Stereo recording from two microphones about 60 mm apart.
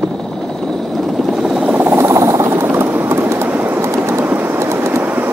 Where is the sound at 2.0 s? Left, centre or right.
Right.